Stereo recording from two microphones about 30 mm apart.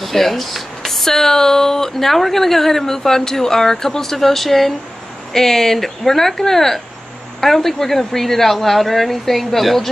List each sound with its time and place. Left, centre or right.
0.0 s speech: centre